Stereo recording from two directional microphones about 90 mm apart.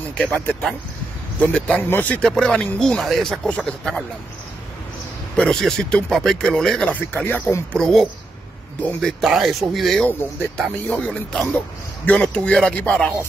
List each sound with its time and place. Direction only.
0.1 s speech: 15° left (ahead or behind)
2.2 s speech: 5° left (ahead or behind)
3.4 s speech: 10° left (ahead or behind)
5.3 s speech: 5° left (ahead or behind)
6.9 s speech: 20° left (ahead or behind)
7.7 s speech: 5° left (ahead or behind)
9.0 s speech: centre (ahead or behind); by 13.1 s 15° left (ahead or behind)